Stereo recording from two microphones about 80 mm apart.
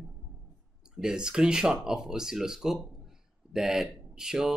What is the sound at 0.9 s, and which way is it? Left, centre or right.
A man's voice, centre.